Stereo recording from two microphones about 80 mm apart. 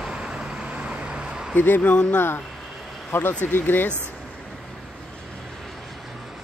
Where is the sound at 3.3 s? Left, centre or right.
Left.